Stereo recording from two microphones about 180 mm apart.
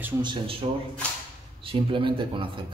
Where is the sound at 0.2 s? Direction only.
30° right (ahead or behind).